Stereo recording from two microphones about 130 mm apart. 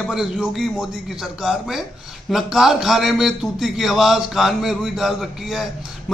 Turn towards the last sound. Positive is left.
turn(degrees=0)  # may be behind; listen again after turning